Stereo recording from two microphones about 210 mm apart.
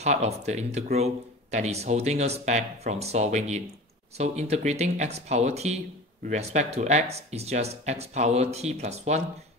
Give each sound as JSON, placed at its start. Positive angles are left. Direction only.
{"t": 0.0, "sound": "speech", "side_deg": -30}